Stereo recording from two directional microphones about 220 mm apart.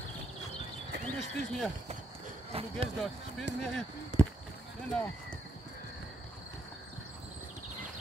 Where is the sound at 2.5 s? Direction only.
25° right (ahead or behind).